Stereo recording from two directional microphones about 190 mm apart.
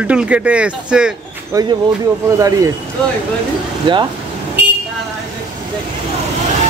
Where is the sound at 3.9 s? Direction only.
25° right (ahead or behind).